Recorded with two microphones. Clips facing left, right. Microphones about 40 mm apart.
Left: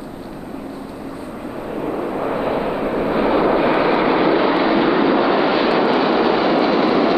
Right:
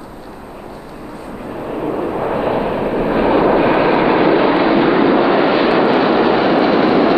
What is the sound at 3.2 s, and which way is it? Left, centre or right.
Vehicle, right.